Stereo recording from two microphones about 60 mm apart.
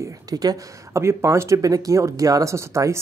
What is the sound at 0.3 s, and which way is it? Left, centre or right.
Speech, right.